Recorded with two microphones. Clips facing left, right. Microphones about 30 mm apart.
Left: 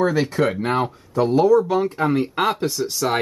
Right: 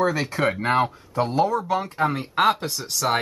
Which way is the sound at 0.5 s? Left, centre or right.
Centre.